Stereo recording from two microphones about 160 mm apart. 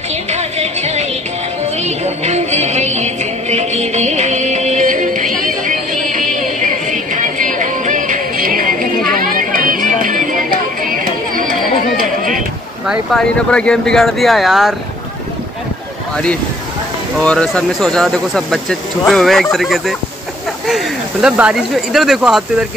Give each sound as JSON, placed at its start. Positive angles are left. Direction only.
{"t": 0.1, "sound": "music", "side_deg": -45}
{"t": 12.0, "sound": "a sound", "side_deg": -60}
{"t": 12.8, "sound": "speech", "side_deg": 0}
{"t": 17.2, "sound": "speech", "side_deg": 5}